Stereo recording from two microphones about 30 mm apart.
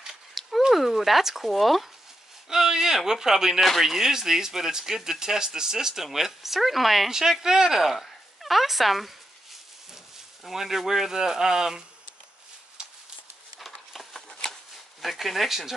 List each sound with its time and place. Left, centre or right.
0.1 s a sound: centre
0.7 s speech: centre
2.5 s speech: centre
7.1 s speech: centre
7.8 s speech: centre
10.4 s speech: centre
12.8 s a sound: right
13.6 s a sound: centre
15.0 s speech: centre